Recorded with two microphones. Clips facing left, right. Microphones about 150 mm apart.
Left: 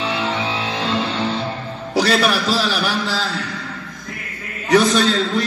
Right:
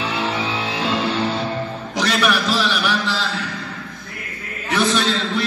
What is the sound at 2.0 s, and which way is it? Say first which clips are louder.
A man's voice: left 3 dB; 35° left (ahead or behind).